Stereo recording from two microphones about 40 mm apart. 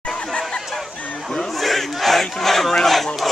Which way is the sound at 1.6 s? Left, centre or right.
Centre.